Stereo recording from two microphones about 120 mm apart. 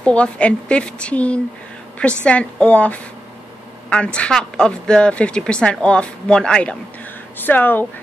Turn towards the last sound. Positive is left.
turn(degrees=15)  # may be behind; listen again after turning